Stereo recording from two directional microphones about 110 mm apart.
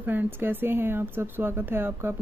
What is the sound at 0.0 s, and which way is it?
Speech, 15° right (ahead or behind).